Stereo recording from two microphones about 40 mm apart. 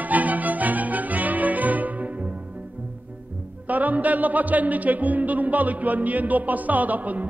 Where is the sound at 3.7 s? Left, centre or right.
Right.